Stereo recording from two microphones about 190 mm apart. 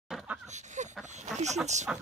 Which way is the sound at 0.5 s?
40° right (ahead or behind).